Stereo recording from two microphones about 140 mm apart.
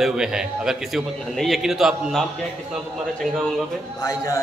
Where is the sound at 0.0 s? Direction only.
5° right (ahead or behind).